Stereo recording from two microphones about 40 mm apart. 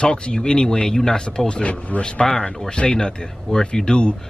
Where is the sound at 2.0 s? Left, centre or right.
Left.